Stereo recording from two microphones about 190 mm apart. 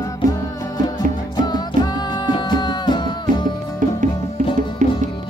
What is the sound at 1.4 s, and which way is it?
Music, 20° left (ahead or behind).